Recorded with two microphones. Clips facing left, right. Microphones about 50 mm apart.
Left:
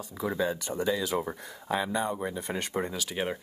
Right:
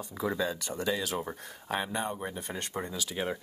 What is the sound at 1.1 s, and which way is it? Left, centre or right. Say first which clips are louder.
Speech: left 4 dB; left.